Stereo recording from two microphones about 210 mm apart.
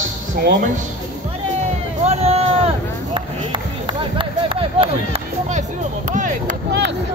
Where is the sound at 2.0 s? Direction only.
30° right (ahead or behind).